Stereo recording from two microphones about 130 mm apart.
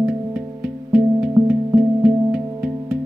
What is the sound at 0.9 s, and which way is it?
Music, 5° right (ahead or behind).